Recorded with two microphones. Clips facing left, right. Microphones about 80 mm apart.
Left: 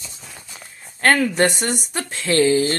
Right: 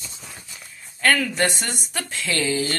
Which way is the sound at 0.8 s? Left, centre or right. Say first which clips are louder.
Left 3 dB; left.